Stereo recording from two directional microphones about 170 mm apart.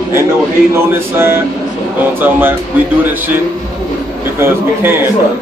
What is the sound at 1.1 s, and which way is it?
Speech, 15° right (ahead or behind).